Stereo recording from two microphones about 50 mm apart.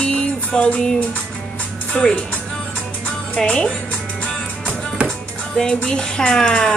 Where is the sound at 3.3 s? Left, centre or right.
Centre.